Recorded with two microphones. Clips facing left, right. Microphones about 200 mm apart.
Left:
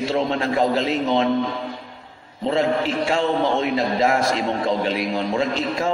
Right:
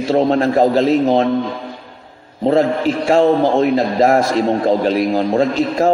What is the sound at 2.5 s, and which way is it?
A man's voice, 45° right (ahead or behind).